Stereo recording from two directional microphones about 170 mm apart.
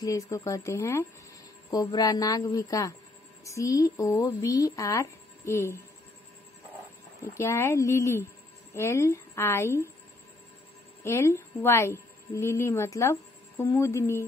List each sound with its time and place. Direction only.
0.0 s speech: 20° left (ahead or behind)
7.2 s a woman's voice: 15° left (ahead or behind)
11.1 s a woman's voice: 15° left (ahead or behind)